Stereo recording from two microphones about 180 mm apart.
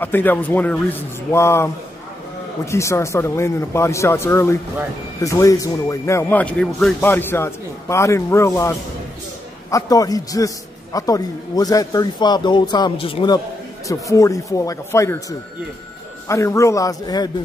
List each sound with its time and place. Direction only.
0.0 s a man's voice: 10° left (ahead or behind); by 13.4 s 30° left (ahead or behind)
13.8 s speech: 15° left (ahead or behind)